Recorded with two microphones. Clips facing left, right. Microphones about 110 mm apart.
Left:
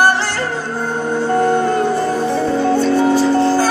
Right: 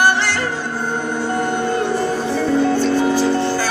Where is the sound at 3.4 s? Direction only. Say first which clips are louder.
Left 6 dB; 40° left (ahead or behind).